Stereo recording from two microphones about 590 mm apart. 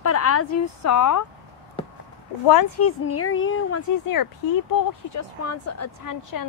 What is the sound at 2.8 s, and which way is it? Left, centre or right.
Speech, left.